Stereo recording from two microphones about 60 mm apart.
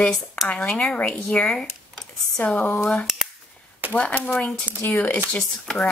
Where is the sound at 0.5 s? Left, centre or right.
Left.